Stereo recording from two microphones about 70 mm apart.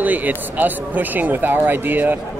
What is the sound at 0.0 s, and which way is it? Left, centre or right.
Speech, right.